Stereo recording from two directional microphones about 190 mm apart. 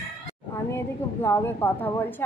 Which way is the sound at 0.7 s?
15° left (ahead or behind).